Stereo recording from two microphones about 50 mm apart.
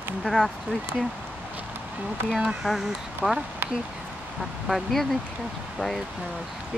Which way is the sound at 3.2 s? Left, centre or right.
Centre.